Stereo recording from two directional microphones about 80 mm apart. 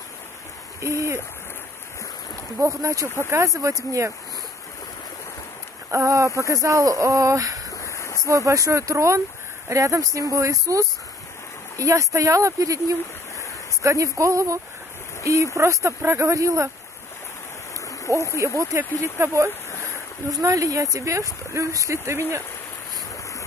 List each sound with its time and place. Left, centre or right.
0.7 s speech: right
2.6 s speech: right
5.9 s speech: right
7.7 s a sound: left
8.3 s speech: right
18.1 s speech: right
20.2 s speech: right